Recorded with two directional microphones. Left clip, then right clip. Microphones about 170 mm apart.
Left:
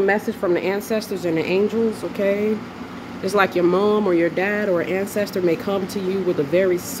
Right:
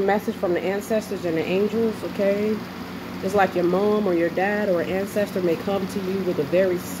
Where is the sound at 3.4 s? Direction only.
20° left (ahead or behind).